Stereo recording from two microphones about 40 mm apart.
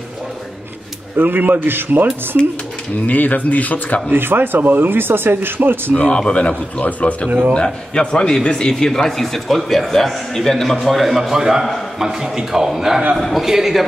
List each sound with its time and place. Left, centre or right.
1.1 s speech: right
3.1 s a man's voice: left
4.1 s speech: right
5.9 s speech: left
7.2 s speech: right
7.5 s a man's voice: left; by 13.8 s centre